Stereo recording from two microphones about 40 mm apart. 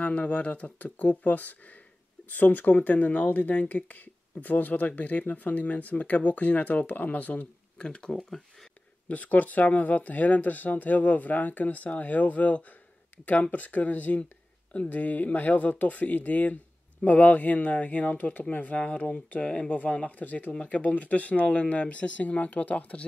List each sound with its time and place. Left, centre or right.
0.0 s speech: left
7.8 s speech: left
9.1 s speech: left
19.7 s speech: left